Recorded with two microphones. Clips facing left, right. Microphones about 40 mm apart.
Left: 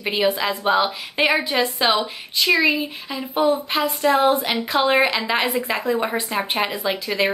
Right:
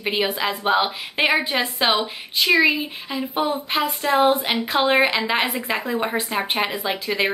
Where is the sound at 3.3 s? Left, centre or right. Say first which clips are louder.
Left 4 dB; centre.